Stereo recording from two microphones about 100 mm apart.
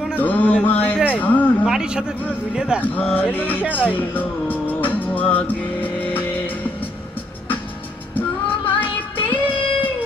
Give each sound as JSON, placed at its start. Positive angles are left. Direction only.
{"t": 0.1, "sound": "music", "side_deg": 15}
{"t": 1.1, "sound": "a sound", "side_deg": 15}
{"t": 1.6, "sound": "speech", "side_deg": -5}
{"t": 2.8, "sound": "speech", "side_deg": 15}
{"t": 3.7, "sound": "music", "side_deg": 15}
{"t": 8.6, "sound": "music", "side_deg": 60}